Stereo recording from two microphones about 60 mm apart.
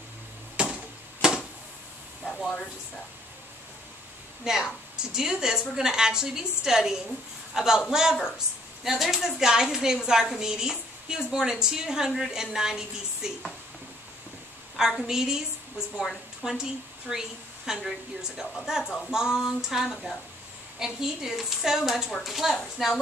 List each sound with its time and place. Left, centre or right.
0.6 s a sound: centre
2.2 s speech: centre
4.5 s a woman's voice: centre
14.8 s a woman's voice: centre
17.6 s a woman's voice: centre